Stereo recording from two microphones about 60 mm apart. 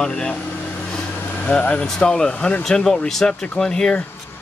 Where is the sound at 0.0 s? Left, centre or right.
Centre.